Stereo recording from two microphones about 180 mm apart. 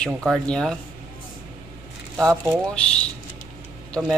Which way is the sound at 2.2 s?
15° right (ahead or behind).